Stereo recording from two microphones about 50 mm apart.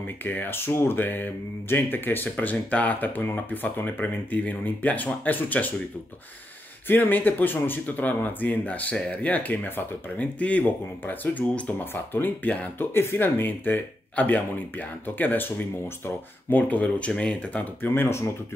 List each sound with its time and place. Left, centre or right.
0.0 s speech: left
6.9 s speech: left
11.4 s speech: left
11.8 s speech: left
16.4 s speech: left
17.8 s speech: left